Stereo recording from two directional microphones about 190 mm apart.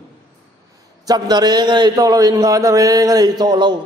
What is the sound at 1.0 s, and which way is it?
A man's voice, 20° right (ahead or behind).